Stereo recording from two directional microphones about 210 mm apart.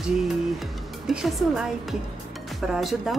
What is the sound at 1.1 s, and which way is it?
Speech, centre (ahead or behind).